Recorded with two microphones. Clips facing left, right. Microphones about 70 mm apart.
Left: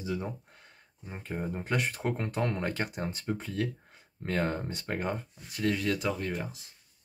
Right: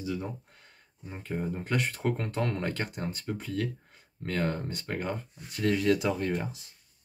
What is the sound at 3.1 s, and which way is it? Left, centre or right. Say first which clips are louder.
Speech: even; left.